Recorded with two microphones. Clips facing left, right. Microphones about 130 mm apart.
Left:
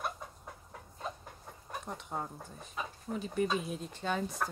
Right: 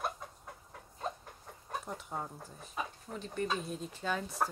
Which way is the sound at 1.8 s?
Centre (ahead or behind).